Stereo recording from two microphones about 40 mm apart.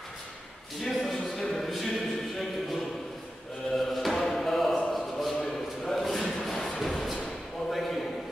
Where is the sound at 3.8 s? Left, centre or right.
Centre.